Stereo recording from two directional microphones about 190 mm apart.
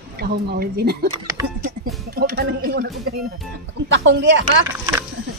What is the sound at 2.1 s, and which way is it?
Speech, 55° right (ahead or behind).